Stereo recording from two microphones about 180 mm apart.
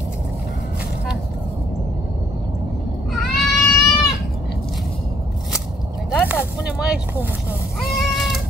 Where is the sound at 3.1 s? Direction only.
Centre (ahead or behind).